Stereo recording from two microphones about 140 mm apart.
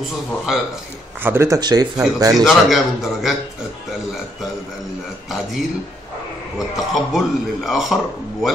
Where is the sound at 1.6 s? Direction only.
30° right (ahead or behind).